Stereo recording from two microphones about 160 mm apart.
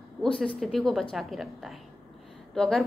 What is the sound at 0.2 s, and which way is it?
A woman's voice, centre (ahead or behind).